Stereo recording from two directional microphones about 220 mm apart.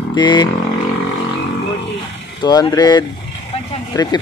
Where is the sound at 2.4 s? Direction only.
20° left (ahead or behind).